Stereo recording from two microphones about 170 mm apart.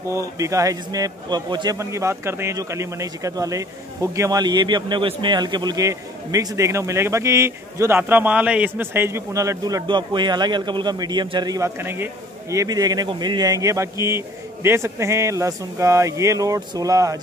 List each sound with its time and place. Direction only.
0.1 s a man's voice: 20° right (ahead or behind)